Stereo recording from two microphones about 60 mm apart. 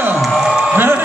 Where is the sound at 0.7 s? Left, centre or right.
Right.